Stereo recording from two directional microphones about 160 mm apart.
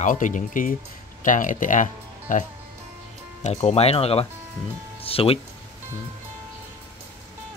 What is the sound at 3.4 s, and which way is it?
Speech, 40° left (ahead or behind).